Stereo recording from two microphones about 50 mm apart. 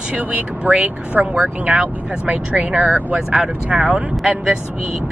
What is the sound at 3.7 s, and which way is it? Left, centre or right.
Speech, centre.